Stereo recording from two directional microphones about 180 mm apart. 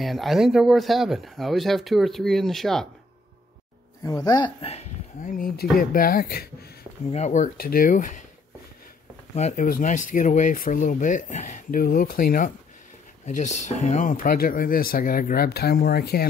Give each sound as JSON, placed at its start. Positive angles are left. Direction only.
{"t": 0.0, "sound": "speech", "side_deg": 0}
{"t": 4.0, "sound": "speech", "side_deg": 20}
{"t": 5.8, "sound": "speech", "side_deg": 50}
{"t": 7.1, "sound": "speech", "side_deg": 40}
{"t": 9.3, "sound": "speech", "side_deg": 40}
{"t": 13.2, "sound": "speech", "side_deg": 40}